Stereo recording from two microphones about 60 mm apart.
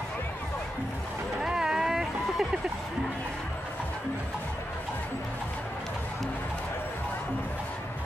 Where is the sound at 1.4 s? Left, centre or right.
Centre.